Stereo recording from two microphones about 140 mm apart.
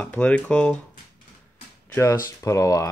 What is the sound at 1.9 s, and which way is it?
Speech, 20° left (ahead or behind).